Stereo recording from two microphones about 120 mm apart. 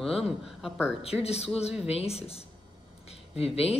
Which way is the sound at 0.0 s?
Centre (ahead or behind).